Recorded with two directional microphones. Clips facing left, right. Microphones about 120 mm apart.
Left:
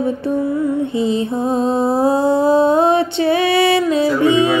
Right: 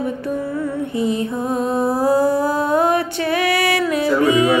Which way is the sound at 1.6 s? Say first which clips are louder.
Left 3 dB; 25° left (ahead or behind).